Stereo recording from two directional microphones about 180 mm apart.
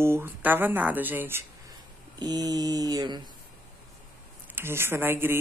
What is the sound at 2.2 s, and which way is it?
Mantra, 20° right (ahead or behind).